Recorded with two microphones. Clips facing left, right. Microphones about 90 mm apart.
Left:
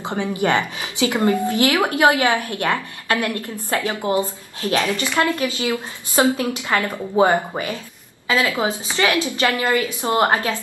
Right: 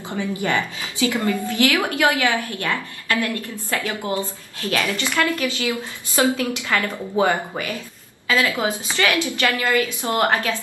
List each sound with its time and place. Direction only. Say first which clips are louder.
0.5 s a woman's voice: left 3 dB; 20° left (ahead or behind)